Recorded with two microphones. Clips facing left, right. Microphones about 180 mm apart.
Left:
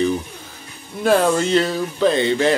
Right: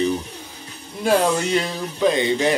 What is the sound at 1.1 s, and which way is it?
Speech, 15° right (ahead or behind).